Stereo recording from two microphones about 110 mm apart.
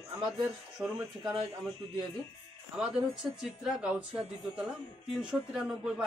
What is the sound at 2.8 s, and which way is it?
Speech, 5° right (ahead or behind).